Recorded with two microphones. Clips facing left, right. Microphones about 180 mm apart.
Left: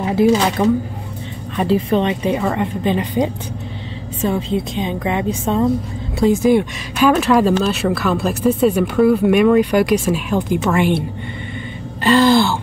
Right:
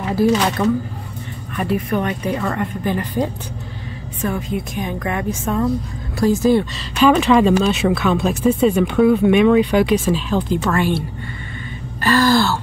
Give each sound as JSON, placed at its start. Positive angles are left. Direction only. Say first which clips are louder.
{"t": 0.0, "sound": "speech", "louder": "left 2 dB", "side_deg": 20}
{"t": 1.6, "sound": "speech", "louder": "left 4 dB", "side_deg": 25}
{"t": 12.0, "sound": "speech", "louder": "left 3 dB", "side_deg": 20}